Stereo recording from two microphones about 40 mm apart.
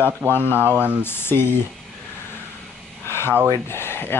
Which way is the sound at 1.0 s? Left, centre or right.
Left.